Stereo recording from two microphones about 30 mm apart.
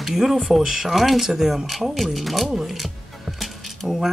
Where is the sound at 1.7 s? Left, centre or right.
Centre.